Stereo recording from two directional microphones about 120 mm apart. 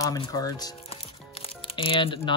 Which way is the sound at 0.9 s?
55° left (ahead or behind).